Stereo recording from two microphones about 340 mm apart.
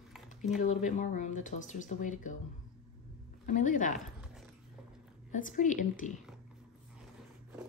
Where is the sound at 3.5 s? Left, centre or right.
Left.